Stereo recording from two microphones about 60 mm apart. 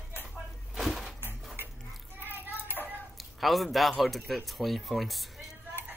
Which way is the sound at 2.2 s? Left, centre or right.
Right.